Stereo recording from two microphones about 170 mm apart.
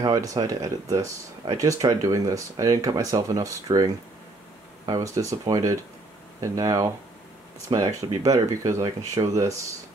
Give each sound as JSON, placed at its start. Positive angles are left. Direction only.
{"t": 0.0, "sound": "speech", "side_deg": -20}